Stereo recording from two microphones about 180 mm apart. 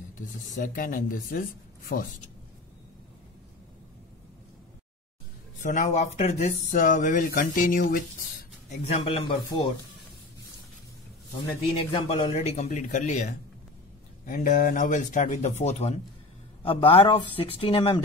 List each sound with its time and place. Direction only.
0.6 s a woman's voice: 50° left (ahead or behind)
5.6 s speech: 45° left (ahead or behind)
8.6 s speech: 35° left (ahead or behind)
11.9 s speech: 30° left (ahead or behind)